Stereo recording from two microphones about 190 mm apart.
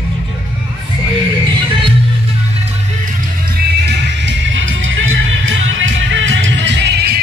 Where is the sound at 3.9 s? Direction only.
65° right (ahead or behind); by 5.5 s 90° right.